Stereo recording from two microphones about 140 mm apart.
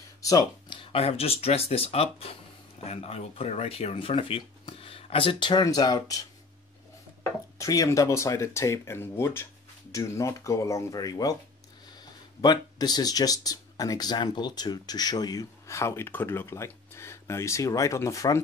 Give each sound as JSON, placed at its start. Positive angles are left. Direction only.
{"t": 0.2, "sound": "speech", "side_deg": 25}
{"t": 7.5, "sound": "speech", "side_deg": 25}
{"t": 12.4, "sound": "speech", "side_deg": 30}